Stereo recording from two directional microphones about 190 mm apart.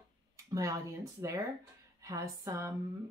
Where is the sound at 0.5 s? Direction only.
15° right (ahead or behind).